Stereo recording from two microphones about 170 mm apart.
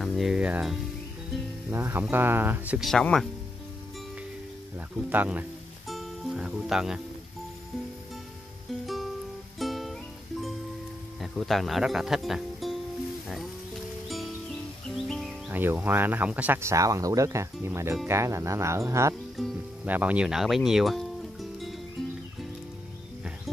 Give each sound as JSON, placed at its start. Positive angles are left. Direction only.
{"t": 0.0, "sound": "music", "side_deg": 0}
{"t": 1.7, "sound": "speech", "side_deg": -15}
{"t": 5.1, "sound": "speech", "side_deg": -10}
{"t": 8.8, "sound": "music", "side_deg": 0}
{"t": 11.1, "sound": "speech", "side_deg": 0}
{"t": 14.0, "sound": "music", "side_deg": 0}
{"t": 15.0, "sound": "speech", "side_deg": 0}
{"t": 19.3, "sound": "music", "side_deg": 0}
{"t": 19.9, "sound": "speech", "side_deg": -10}